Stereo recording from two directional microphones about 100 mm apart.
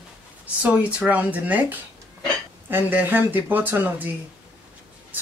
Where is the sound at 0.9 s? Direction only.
15° right (ahead or behind).